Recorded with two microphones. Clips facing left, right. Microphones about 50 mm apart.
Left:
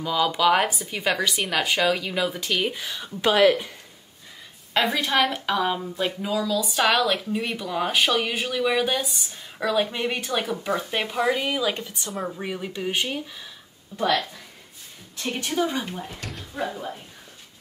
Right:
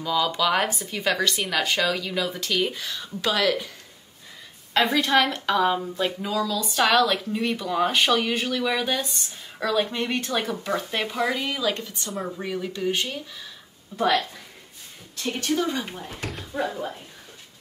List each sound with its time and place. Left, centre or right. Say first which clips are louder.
0.0 s a woman's voice: left 2 dB; centre
4.7 s a woman's voice: right 2 dB; centre
15.2 s speech: even; centre
16.3 s speech: right 3 dB; centre